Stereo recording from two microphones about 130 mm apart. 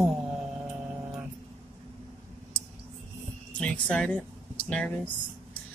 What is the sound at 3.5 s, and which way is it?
Speech, 10° left (ahead or behind).